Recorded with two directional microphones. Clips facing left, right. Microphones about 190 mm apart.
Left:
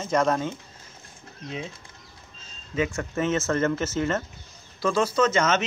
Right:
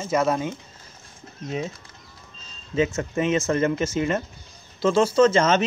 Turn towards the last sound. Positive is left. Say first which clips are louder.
# right 5 dB
turn(degrees=-30)  # may be behind; listen again after turning